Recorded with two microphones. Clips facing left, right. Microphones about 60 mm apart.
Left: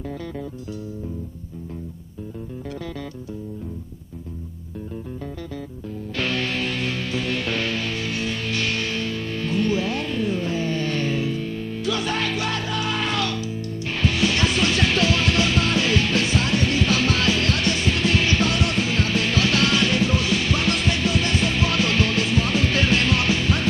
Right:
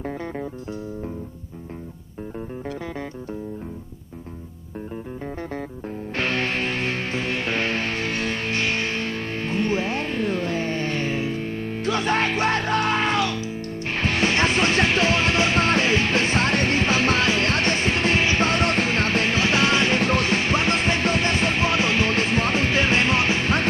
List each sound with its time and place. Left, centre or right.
6.1 s music: right
10.9 s music: right
19.3 s music: right
20.0 s music: right
22.1 s music: right